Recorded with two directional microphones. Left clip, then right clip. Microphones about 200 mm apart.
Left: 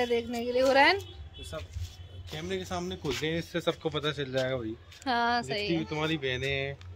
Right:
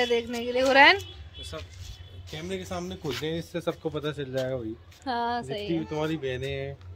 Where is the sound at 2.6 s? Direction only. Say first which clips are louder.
Even; 50° right (ahead or behind).